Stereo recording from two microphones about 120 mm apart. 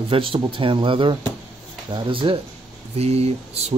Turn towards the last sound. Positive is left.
turn(degrees=-60)  # may be behind; listen again after turning